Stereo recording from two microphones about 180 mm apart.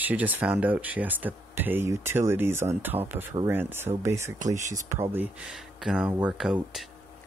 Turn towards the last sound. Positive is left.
turn(degrees=0)  # may be behind; listen again after turning